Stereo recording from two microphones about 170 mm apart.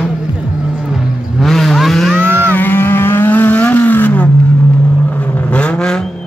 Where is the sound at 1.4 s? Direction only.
Centre (ahead or behind).